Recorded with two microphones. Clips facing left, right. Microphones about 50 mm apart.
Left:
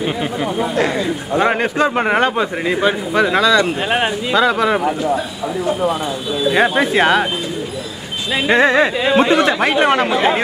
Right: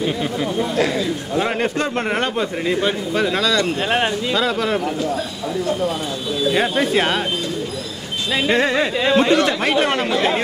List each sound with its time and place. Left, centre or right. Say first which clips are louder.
0.0 s a man's voice: left 2 dB; left
8.3 s a man's voice: left 4 dB; centre